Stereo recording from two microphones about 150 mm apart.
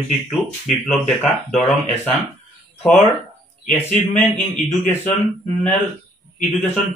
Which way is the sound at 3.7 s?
10° left (ahead or behind).